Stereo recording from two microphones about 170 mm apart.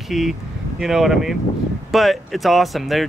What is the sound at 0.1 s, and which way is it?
Speech, centre (ahead or behind).